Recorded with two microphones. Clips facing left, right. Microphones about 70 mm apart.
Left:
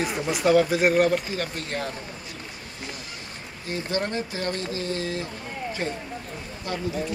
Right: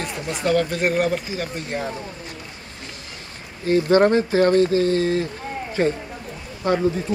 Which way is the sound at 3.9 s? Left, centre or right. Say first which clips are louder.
Right 12 dB; right.